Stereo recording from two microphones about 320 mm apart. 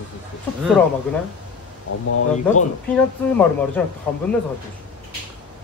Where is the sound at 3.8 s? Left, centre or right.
Centre.